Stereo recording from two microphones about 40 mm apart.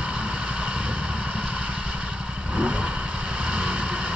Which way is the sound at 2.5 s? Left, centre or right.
Right.